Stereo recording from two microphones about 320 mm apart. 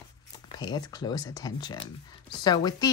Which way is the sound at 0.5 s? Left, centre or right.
Centre.